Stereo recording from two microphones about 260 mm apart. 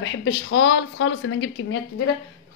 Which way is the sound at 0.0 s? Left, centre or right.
Left.